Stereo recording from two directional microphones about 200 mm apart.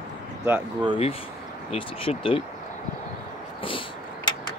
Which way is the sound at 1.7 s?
25° left (ahead or behind).